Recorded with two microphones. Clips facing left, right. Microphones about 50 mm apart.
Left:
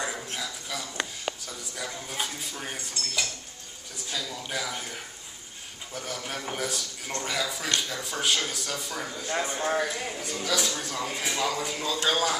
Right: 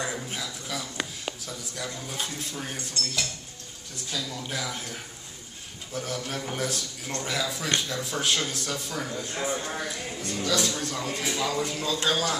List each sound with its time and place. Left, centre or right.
0.0 s a sound: centre
1.8 s speech: centre
4.3 s speech: centre
6.2 s speech: centre
7.2 s speech: centre
9.6 s speech: left
10.4 s speech: centre
11.6 s speech: centre